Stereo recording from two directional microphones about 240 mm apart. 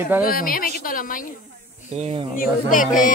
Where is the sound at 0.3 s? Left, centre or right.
Left.